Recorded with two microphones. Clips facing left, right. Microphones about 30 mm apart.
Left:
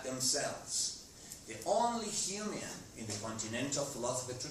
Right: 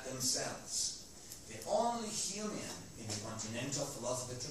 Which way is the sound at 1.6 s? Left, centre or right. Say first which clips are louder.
Left 2 dB; left.